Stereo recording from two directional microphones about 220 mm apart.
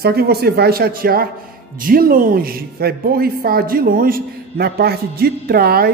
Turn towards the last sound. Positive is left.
turn(degrees=-45)  # may be behind; listen again after turning